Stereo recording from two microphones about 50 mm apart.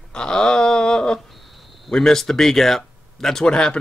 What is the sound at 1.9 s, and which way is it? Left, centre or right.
Speech, centre.